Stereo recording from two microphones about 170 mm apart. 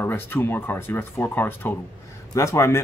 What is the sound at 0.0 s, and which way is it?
A man's voice, 10° left (ahead or behind).